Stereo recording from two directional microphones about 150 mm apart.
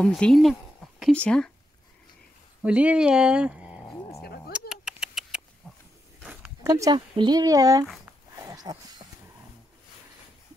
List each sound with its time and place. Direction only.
0.0 s speech: 5° left (ahead or behind)
2.6 s speech: 10° right (ahead or behind)
4.5 s a sound: 5° right (ahead or behind)
6.6 s speech: 25° right (ahead or behind)
8.0 s dog: 20° right (ahead or behind)